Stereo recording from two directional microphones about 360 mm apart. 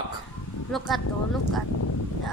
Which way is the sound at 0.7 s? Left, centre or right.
Centre.